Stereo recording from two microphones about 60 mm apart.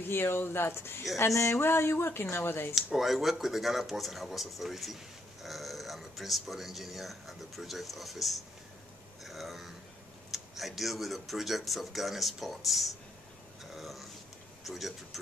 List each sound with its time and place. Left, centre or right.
0.1 s speech: left
1.1 s speech: left
1.6 s speech: left
2.7 s speech: centre
13.7 s a sound: centre
14.6 s speech: centre